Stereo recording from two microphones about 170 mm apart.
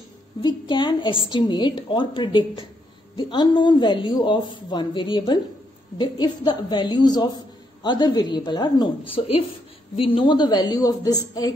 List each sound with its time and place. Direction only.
0.4 s a woman's voice: 25° left (ahead or behind)